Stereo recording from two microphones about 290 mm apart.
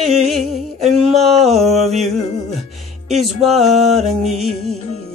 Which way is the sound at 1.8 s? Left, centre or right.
Right.